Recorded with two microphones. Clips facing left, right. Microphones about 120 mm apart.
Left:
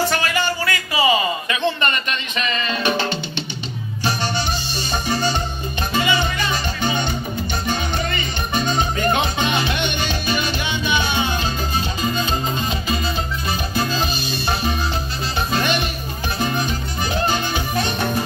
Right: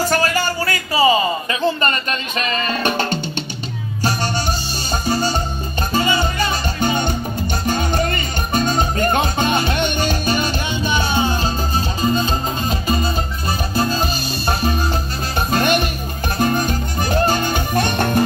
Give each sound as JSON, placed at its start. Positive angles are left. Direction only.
{"t": 0.1, "sound": "a sound", "side_deg": -40}
{"t": 5.0, "sound": "music", "side_deg": -40}
{"t": 15.5, "sound": "music", "side_deg": -50}